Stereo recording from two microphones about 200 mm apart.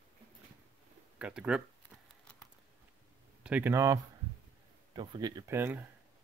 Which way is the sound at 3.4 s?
10° right (ahead or behind).